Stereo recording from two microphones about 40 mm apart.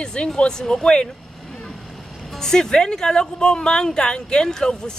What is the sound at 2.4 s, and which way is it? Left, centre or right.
Speech, centre.